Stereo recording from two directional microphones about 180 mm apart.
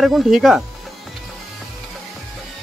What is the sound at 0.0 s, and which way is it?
Speech, centre (ahead or behind).